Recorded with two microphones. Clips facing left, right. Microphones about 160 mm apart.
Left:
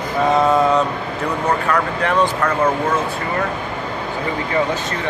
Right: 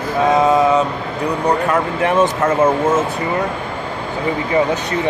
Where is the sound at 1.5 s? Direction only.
20° right (ahead or behind).